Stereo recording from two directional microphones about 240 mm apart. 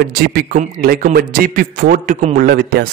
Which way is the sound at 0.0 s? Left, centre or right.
Right.